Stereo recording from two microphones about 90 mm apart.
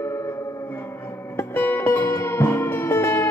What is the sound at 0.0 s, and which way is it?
Music, 30° left (ahead or behind).